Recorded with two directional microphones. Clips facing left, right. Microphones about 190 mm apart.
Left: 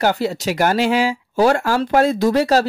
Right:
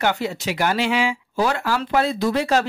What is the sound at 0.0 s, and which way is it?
Speech, 35° left (ahead or behind).